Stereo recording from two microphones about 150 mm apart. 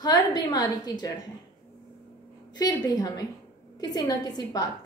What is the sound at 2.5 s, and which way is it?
A woman's voice, 25° left (ahead or behind).